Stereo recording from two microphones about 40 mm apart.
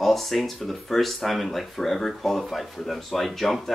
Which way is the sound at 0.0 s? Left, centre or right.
Centre.